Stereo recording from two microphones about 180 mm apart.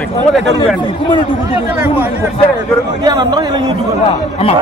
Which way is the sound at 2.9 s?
20° right (ahead or behind).